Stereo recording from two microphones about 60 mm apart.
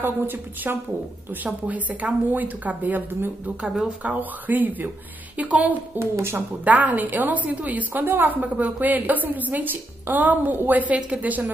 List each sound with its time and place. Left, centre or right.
0.0 s speech: right
1.3 s a woman's voice: right
5.9 s a woman's voice: right
6.3 s a woman's voice: right